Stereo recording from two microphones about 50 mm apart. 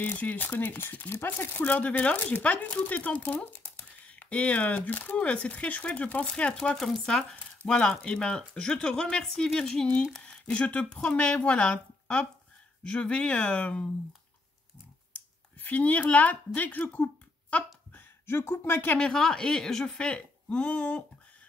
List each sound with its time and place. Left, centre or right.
0.0 s speech: left
6.2 s speech: centre
9.2 s speech: centre
10.2 s a woman's voice: left
15.6 s speech: left
18.2 s speech: left
18.9 s a woman's voice: centre